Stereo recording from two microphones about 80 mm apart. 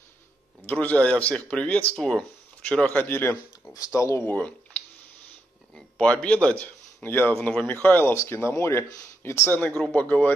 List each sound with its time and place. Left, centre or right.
0.7 s speech: centre
2.0 s speech: centre
3.0 s speech: left
3.7 s speech: left
4.2 s a man's voice: left
9.9 s speech: centre